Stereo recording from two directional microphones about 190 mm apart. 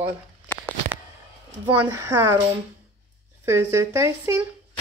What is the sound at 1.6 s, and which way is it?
Speech, 10° right (ahead or behind).